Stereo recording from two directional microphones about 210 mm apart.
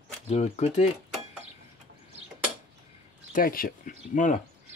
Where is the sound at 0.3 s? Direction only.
30° left (ahead or behind).